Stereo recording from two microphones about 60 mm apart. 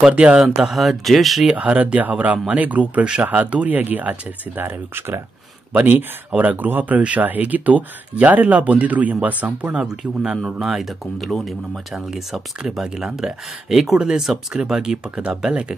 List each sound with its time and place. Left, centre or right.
0.0 s speech: centre
1.5 s speech: centre
9.8 s speech: centre